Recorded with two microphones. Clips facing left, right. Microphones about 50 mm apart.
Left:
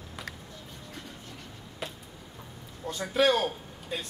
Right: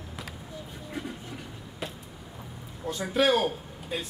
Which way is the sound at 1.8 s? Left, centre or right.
Centre.